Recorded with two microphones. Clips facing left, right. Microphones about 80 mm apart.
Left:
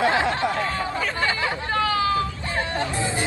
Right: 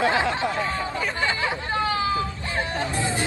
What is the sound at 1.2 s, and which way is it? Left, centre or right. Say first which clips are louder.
Chatter: even; centre.